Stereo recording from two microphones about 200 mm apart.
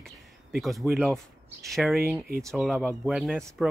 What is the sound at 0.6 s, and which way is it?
Speech, centre (ahead or behind).